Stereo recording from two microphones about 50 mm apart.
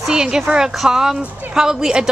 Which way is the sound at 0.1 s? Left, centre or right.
Centre.